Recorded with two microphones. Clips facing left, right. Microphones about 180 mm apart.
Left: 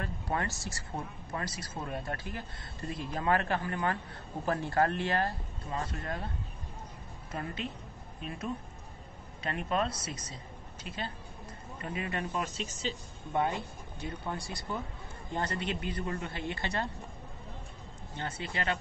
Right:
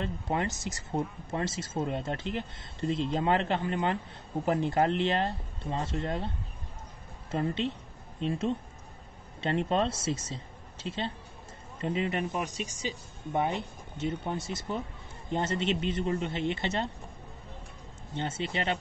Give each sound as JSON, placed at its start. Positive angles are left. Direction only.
{"t": 0.0, "sound": "a woman's voice", "side_deg": -20}
{"t": 18.1, "sound": "speech", "side_deg": -25}